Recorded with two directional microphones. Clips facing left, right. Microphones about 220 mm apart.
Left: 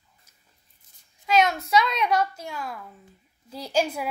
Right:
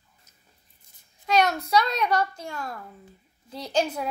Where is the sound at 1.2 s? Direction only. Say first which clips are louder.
Left 1 dB; centre (ahead or behind).